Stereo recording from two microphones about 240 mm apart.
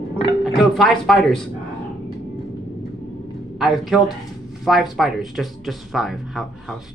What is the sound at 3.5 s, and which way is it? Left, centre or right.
A man's voice, centre.